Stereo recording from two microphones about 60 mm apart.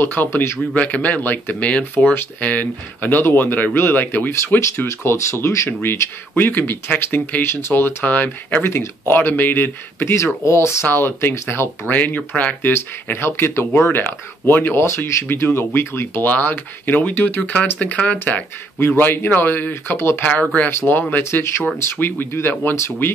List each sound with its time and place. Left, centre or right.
0.0 s speech: left
4.6 s speech: left
5.7 s speech: left
8.6 s speech: left
11.9 s speech: left
12.7 s speech: left
14.8 s speech: left
15.2 s speech: left
16.3 s speech: left
18.8 s speech: left
19.7 s speech: left
20.5 s speech: left
21.2 s speech: left